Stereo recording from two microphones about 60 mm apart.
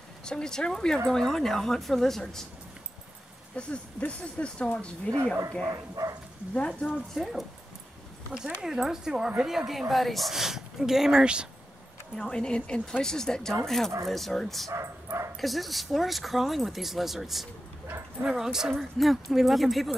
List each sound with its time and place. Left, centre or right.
0.2 s speech: centre
3.5 s speech: centre
6.0 s speech: right
6.5 s speech: centre
8.5 s speech: centre
12.2 s speech: centre
14.7 s bow-wow: right
15.4 s speech: centre